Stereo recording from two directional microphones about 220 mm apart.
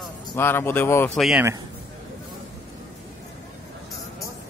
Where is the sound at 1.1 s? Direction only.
Centre (ahead or behind).